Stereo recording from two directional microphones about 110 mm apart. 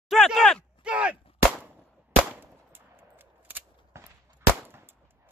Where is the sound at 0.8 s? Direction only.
10° right (ahead or behind).